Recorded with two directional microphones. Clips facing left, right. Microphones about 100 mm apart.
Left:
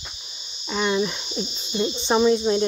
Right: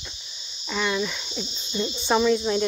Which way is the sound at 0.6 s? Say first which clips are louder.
Left 3 dB; 20° left (ahead or behind).